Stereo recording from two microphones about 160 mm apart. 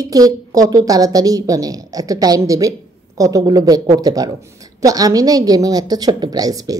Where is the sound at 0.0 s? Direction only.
25° right (ahead or behind).